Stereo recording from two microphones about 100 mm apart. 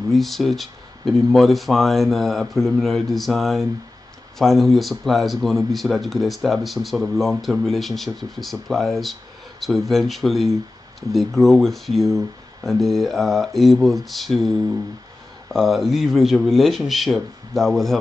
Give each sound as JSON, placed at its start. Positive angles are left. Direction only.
{"t": 0.1, "sound": "speech", "side_deg": 0}